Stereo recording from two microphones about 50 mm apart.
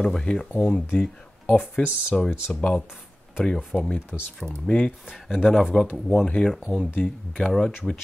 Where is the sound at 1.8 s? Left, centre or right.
Left.